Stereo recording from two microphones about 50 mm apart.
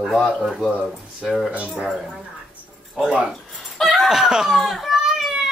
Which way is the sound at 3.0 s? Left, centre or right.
Centre.